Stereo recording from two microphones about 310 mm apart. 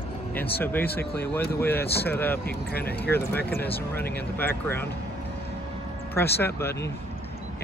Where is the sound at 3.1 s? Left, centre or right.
Centre.